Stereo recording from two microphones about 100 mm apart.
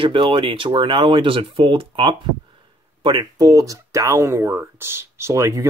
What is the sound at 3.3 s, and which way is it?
Speech, 35° right (ahead or behind).